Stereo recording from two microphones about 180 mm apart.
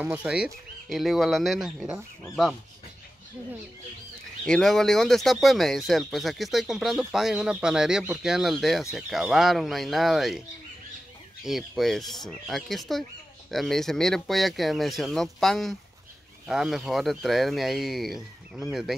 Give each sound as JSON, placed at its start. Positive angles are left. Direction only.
{"t": 0.0, "sound": "speech", "side_deg": -10}
{"t": 4.5, "sound": "speech", "side_deg": 0}
{"t": 11.4, "sound": "speech", "side_deg": 0}